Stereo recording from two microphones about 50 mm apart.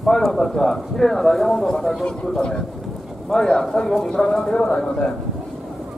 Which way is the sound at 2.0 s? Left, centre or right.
Centre.